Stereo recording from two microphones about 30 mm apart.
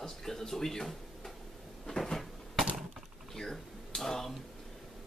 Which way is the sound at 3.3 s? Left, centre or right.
Centre.